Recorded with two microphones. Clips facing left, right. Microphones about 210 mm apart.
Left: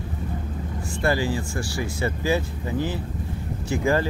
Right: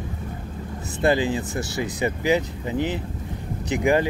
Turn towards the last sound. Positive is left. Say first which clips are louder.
# right 2 dB
turn(degrees=-15)  # may be behind; listen again after turning